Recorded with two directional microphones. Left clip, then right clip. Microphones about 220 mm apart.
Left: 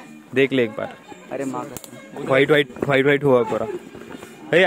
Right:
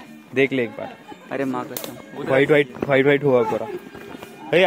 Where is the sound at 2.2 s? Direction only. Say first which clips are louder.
Even; 25° left (ahead or behind).